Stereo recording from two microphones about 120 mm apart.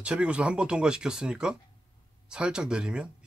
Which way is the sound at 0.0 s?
10° right (ahead or behind).